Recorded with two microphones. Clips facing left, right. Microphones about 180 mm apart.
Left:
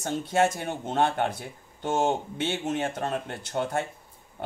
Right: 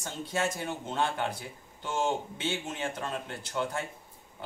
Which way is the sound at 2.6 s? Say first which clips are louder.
Left 7 dB; 50° left (ahead or behind).